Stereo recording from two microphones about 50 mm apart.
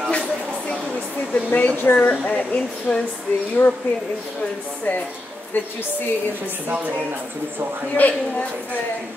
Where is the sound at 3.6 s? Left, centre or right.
Left.